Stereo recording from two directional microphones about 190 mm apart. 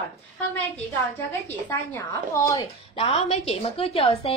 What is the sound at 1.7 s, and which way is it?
Speech, 15° left (ahead or behind).